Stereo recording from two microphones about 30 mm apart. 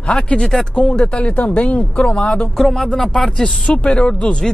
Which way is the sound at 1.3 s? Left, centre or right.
Left.